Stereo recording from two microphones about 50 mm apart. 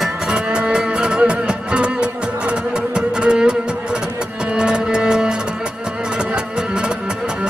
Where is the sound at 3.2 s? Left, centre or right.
Centre.